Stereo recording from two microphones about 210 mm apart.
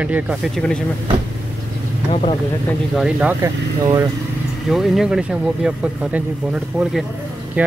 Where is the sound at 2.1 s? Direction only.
30° left (ahead or behind).